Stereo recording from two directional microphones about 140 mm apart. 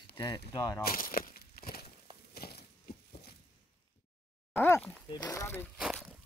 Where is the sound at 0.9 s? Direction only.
85° left.